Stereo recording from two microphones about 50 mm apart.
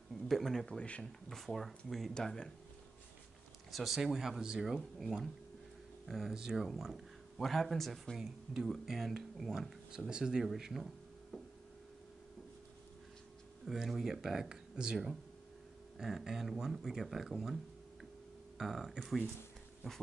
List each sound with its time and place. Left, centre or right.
0.1 s a sound: centre
0.7 s speech: left
1.0 s speech: centre
2.1 s speech: centre
3.7 s speech: centre
4.7 s speech: centre
8.2 s speech: centre
9.9 s speech: centre
13.7 s speech: centre
18.6 s speech: centre